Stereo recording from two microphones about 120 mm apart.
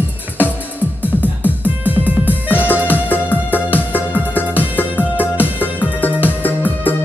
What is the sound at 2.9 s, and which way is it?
Music, 15° left (ahead or behind).